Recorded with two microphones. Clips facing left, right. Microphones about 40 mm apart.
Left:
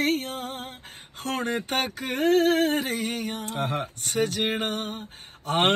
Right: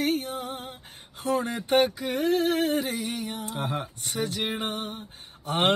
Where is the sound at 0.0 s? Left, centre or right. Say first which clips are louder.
Left 1 dB; left.